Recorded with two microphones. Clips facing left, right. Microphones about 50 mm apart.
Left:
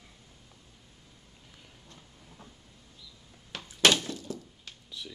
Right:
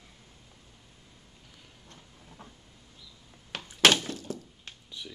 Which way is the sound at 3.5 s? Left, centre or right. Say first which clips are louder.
Right 2 dB; right.